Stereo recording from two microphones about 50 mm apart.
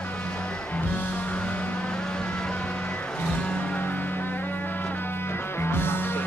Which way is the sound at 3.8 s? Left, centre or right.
Left.